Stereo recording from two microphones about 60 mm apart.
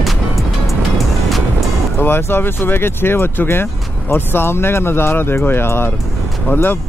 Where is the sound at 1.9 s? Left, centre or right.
Left.